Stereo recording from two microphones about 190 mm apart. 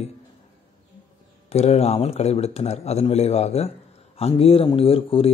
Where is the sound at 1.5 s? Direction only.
35° left (ahead or behind).